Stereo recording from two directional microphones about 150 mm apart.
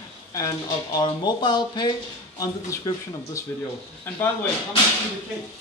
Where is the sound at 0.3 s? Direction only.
25° left (ahead or behind).